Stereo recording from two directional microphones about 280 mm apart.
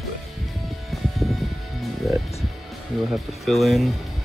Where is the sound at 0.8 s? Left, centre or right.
Centre.